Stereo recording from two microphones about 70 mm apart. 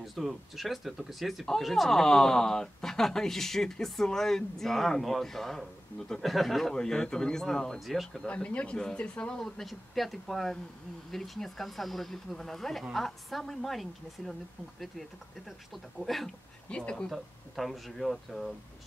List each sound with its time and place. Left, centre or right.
0.0 s speech: centre
8.3 s speech: centre
9.4 s speech: centre
16.6 s speech: centre
17.1 s speech: centre